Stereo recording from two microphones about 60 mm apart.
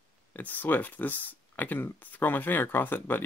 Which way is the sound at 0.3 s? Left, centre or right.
Left.